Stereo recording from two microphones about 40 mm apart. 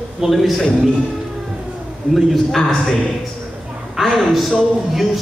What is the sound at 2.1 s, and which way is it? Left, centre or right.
Speech, centre.